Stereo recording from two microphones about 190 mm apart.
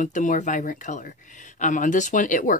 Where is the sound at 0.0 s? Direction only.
40° left (ahead or behind).